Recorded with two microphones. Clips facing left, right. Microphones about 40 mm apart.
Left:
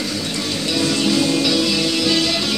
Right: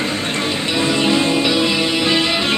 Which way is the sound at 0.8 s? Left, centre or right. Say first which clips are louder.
Right 2 dB; right.